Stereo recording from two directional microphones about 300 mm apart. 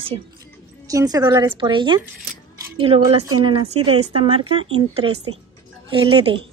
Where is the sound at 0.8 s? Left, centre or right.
Centre.